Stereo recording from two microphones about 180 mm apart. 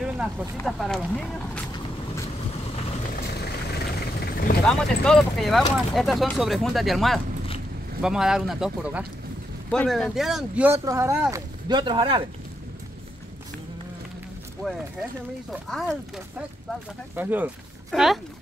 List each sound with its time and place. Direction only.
0.0 s a sound: 5° right (ahead or behind)
0.7 s speech: centre (ahead or behind)
3.3 s vehicle: 65° left (ahead or behind)
4.6 s speech: 5° left (ahead or behind); by 12.3 s 25° right (ahead or behind)
14.6 s speech: centre (ahead or behind)